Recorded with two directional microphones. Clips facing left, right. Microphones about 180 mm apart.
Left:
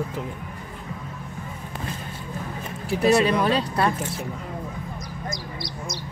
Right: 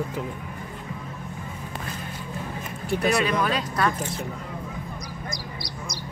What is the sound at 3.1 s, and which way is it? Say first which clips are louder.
Speech: left 5 dB; 25° left (ahead or behind).